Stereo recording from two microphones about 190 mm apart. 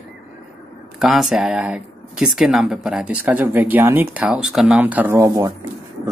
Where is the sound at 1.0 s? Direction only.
Centre (ahead or behind).